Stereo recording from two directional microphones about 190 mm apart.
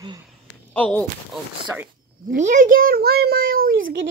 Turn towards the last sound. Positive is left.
turn(degrees=-50)  # may be behind; listen again after turning